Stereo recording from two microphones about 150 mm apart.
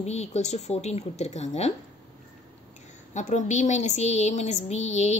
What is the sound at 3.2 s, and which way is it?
Speech, 50° left (ahead or behind).